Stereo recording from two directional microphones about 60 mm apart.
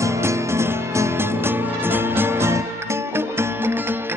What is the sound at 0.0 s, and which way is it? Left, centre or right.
Music, right.